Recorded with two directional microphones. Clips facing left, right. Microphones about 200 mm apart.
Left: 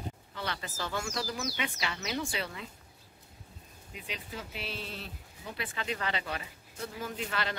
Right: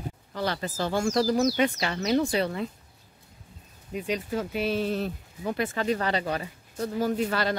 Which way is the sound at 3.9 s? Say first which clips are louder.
Right 13 dB; 45° right (ahead or behind).